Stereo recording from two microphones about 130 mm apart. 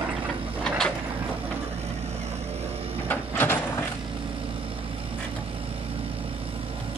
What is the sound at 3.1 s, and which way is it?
Sliding door, 15° left (ahead or behind).